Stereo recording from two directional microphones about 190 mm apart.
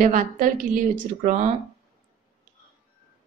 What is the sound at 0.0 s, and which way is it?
Speech, 45° right (ahead or behind).